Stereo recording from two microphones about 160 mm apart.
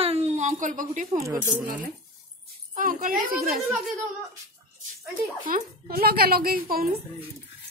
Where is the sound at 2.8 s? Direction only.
55° right (ahead or behind).